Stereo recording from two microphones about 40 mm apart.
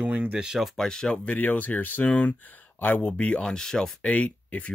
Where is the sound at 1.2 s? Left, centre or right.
Left.